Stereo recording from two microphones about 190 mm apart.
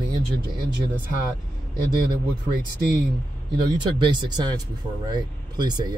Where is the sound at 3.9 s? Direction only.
25° right (ahead or behind).